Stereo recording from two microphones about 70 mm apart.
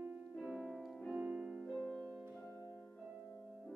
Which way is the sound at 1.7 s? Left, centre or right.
Centre.